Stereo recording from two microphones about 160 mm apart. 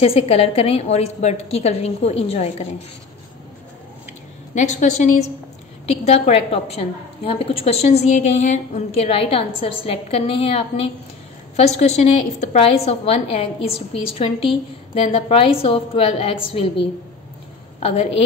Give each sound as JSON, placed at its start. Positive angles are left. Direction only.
{"t": 0.0, "sound": "a woman's voice", "side_deg": 35}
{"t": 4.6, "sound": "a woman's voice", "side_deg": 45}